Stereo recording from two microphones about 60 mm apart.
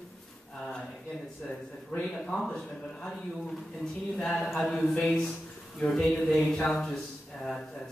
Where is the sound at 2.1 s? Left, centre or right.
Centre.